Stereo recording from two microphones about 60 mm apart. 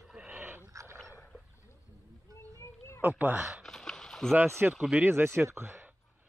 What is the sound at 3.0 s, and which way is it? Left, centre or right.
Speech, right.